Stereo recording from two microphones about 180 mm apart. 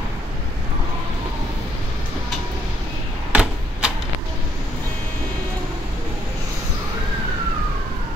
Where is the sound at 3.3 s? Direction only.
5° right (ahead or behind).